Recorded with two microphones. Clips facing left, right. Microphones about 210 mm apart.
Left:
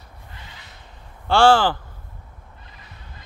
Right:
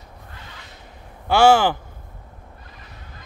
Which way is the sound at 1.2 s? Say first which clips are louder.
Right 1 dB; 10° right (ahead or behind).